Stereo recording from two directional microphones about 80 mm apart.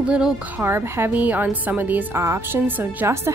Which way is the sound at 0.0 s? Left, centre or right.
Centre.